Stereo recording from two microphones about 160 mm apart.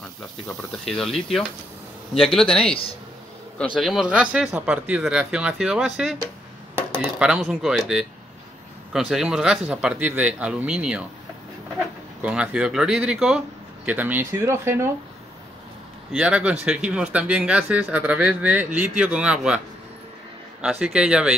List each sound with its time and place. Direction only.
0.8 s speech: centre (ahead or behind)
2.6 s a man's voice: 35° left (ahead or behind)
3.7 s speech: centre (ahead or behind)
12.2 s speech: 10° right (ahead or behind)
16.1 s speech: 5° right (ahead or behind)
20.6 s speech: 5° right (ahead or behind)